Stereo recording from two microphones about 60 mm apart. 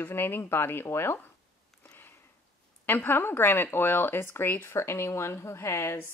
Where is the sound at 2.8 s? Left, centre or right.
Left.